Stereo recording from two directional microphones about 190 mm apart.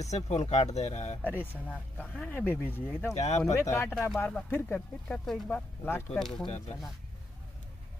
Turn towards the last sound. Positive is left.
turn(degrees=0)  # may be behind; listen again after turning